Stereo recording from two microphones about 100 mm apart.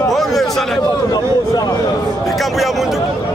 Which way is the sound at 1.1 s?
40° left (ahead or behind).